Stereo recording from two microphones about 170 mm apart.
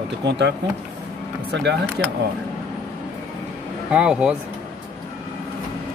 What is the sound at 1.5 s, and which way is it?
Speech, 80° right.